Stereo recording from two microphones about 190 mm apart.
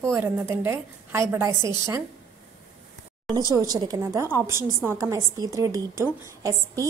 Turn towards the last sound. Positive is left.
turn(degrees=-15)  # may be behind; listen again after turning